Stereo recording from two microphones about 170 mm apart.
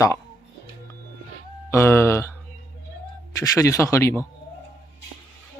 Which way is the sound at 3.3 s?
20° left (ahead or behind).